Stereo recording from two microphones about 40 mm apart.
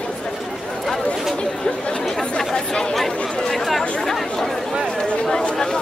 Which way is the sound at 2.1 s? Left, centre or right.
Centre.